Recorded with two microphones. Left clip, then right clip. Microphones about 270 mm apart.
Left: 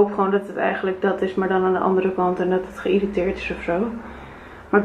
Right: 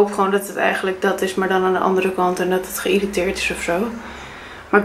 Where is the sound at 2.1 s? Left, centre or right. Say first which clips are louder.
Right 2 dB; left.